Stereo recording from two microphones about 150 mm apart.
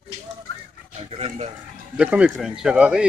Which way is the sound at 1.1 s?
45° right (ahead or behind).